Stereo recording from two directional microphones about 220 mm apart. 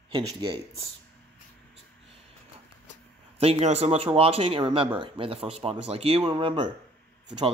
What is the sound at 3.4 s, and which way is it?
Speech, 30° right (ahead or behind).